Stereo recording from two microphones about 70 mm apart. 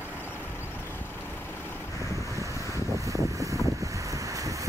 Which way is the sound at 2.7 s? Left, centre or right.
Right.